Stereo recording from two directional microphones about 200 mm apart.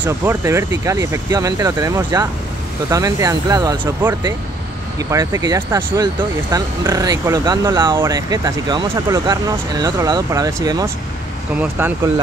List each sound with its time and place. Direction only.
0.0 s speech: 10° right (ahead or behind)